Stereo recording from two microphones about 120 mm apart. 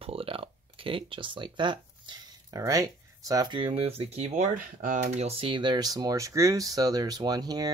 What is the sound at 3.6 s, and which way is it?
Speech, 50° right (ahead or behind).